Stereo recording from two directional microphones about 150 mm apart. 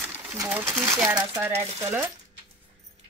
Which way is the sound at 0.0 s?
10° right (ahead or behind).